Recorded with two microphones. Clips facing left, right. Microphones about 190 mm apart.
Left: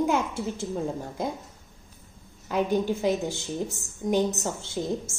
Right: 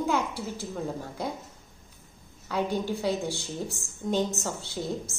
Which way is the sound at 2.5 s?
20° left (ahead or behind).